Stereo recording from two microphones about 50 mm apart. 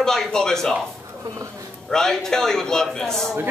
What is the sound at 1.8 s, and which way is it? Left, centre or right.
Speech, centre.